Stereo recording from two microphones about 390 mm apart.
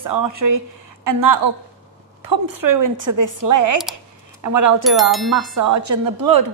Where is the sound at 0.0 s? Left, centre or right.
Right.